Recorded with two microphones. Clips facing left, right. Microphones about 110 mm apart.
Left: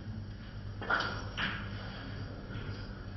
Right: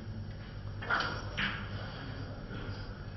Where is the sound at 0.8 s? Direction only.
30° left (ahead or behind).